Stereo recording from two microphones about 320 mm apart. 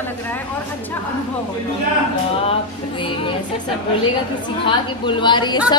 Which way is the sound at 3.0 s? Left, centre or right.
Centre.